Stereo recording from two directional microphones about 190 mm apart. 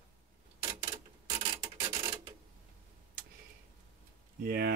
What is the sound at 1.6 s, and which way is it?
Rub, 20° right (ahead or behind).